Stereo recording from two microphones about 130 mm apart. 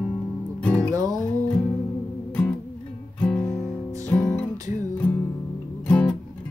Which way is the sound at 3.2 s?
5° left (ahead or behind).